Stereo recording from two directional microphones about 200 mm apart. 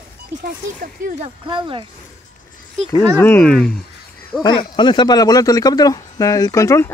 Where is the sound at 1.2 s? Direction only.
25° right (ahead or behind).